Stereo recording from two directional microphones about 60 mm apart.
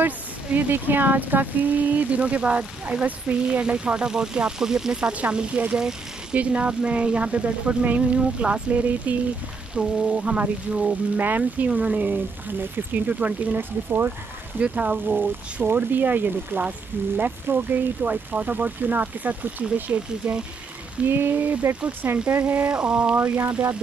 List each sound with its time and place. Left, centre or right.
0.0 s speech: right
11.1 s speech: right
14.6 s speech: right
21.1 s speech: right
22.7 s a sound: centre
23.1 s speech: right